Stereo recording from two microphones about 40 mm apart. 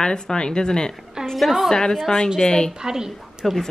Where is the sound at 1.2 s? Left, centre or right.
Centre.